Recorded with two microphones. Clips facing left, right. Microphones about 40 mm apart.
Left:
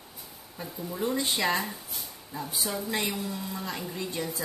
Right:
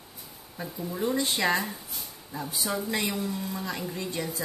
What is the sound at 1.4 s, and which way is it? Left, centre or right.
Speech, centre.